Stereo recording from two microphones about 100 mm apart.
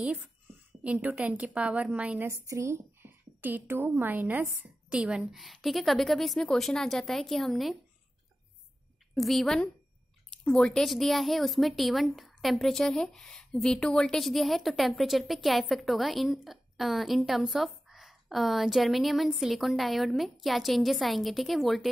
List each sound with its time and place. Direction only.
0.0 s a woman's voice: 15° right (ahead or behind)
2.2 s a woman's voice: 30° right (ahead or behind); by 7.7 s centre (ahead or behind)
9.1 s speech: centre (ahead or behind)